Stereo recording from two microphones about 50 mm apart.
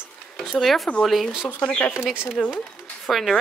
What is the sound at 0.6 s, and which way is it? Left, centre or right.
Speech, centre.